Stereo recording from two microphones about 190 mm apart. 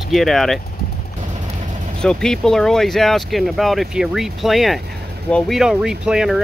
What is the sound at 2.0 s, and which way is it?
Speech, 5° left (ahead or behind).